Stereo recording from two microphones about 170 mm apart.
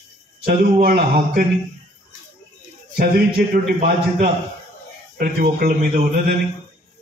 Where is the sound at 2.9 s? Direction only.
60° right (ahead or behind).